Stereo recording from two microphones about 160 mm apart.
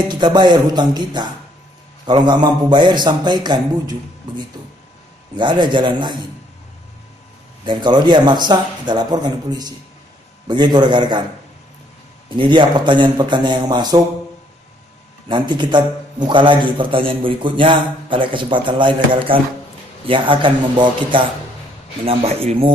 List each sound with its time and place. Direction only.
0.1 s speech: 30° right (ahead or behind)
5.3 s speech: 30° right (ahead or behind)
7.6 s speech: 30° right (ahead or behind)
12.4 s speech: 30° right (ahead or behind)
15.2 s a man's voice: 30° right (ahead or behind)